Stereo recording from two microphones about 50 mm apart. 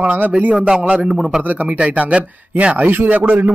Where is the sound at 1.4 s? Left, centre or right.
Right.